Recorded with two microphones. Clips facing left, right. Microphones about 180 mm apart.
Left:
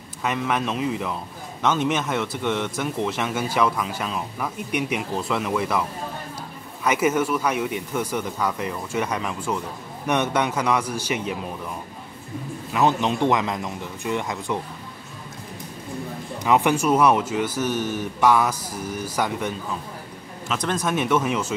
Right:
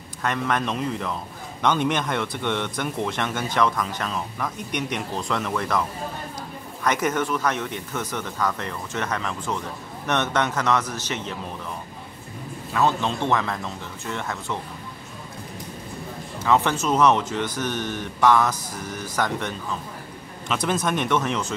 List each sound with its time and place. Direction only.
0.2 s speech: 5° left (ahead or behind)
12.7 s speech: 15° left (ahead or behind)
16.3 s speech: 15° left (ahead or behind)
20.4 s speech: 5° right (ahead or behind)